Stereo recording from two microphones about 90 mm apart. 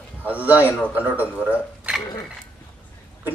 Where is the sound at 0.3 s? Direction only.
15° right (ahead or behind).